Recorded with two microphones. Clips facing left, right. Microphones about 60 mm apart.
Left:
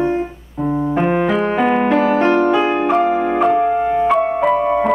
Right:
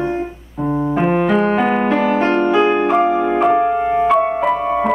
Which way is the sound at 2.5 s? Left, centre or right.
Centre.